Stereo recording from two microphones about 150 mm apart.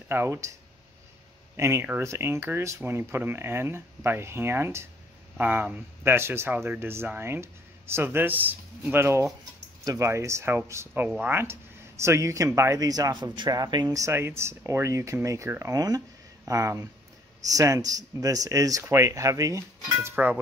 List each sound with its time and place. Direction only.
0.1 s speech: 15° right (ahead or behind)
1.6 s speech: 15° right (ahead or behind)